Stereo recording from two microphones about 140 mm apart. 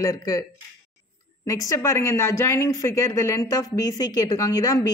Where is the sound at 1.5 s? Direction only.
20° left (ahead or behind).